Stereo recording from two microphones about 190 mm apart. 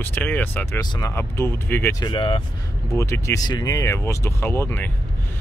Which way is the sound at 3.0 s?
15° left (ahead or behind).